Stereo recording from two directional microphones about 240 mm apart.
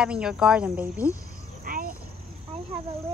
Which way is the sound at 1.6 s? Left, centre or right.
Right.